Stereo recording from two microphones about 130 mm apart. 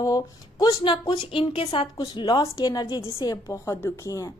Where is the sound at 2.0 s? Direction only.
35° left (ahead or behind).